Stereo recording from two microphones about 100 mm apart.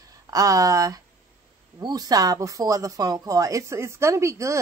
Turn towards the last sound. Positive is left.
turn(degrees=-30)  # may be behind; listen again after turning